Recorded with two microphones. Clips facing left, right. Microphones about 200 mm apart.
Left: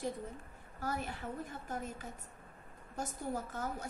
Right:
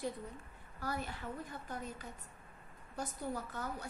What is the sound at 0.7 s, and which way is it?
A woman's voice, 45° left (ahead or behind).